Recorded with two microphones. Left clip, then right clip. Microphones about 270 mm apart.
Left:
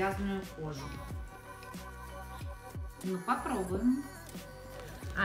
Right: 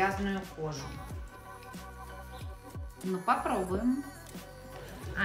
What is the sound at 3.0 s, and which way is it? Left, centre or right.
A woman's voice, centre.